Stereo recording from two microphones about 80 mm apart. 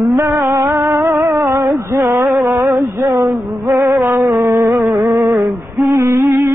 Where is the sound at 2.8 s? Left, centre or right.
Right.